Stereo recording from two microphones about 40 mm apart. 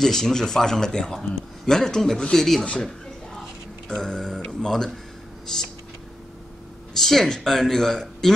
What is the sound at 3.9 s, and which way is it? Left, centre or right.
Speech, centre.